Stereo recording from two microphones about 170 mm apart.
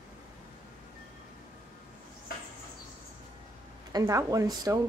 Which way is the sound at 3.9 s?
20° right (ahead or behind).